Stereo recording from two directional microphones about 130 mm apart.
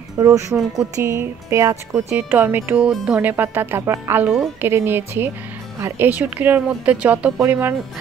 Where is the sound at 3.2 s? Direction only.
15° right (ahead or behind).